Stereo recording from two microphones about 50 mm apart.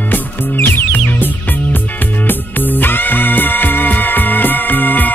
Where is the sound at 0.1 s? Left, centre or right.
Left.